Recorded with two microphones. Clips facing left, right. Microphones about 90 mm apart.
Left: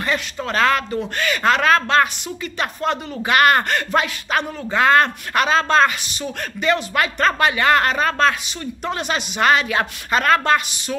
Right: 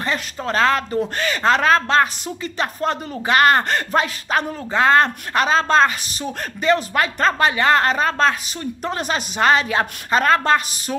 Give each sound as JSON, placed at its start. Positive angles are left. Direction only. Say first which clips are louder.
{"t": 0.0, "sound": "speech", "louder": "left 1 dB", "side_deg": -30}